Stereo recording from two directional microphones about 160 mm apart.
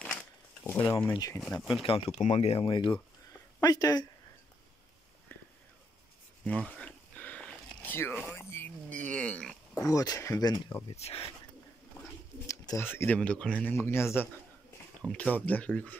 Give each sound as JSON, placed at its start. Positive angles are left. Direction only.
{"t": 0.7, "sound": "speech", "side_deg": 15}
{"t": 1.4, "sound": "speech", "side_deg": 0}
{"t": 1.8, "sound": "speech", "side_deg": 35}
{"t": 6.4, "sound": "a sound", "side_deg": 5}
{"t": 9.8, "sound": "speech", "side_deg": 20}
{"t": 11.0, "sound": "speech", "side_deg": 40}
{"t": 12.4, "sound": "speech", "side_deg": 20}